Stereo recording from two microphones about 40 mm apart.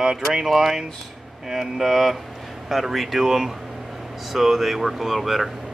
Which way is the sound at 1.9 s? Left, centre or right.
Centre.